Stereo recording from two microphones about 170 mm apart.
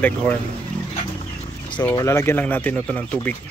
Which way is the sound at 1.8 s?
15° left (ahead or behind).